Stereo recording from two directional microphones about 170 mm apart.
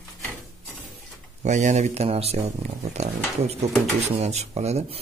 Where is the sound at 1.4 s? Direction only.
45° right (ahead or behind).